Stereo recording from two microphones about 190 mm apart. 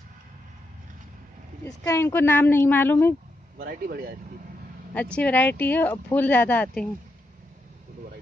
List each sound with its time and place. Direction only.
1.6 s a woman's voice: 15° left (ahead or behind)
3.5 s speech: 50° right (ahead or behind)
4.9 s a woman's voice: 5° left (ahead or behind)